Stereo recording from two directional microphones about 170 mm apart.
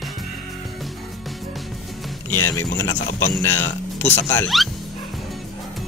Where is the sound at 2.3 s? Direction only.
15° left (ahead or behind).